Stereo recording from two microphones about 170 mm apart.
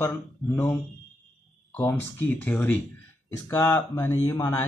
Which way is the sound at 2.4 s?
10° left (ahead or behind).